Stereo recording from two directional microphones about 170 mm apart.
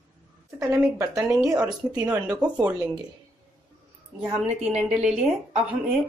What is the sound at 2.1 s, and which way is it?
Speech, 10° right (ahead or behind).